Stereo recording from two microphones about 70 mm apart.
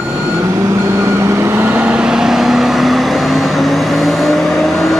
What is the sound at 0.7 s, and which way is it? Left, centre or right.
Vehicle, right.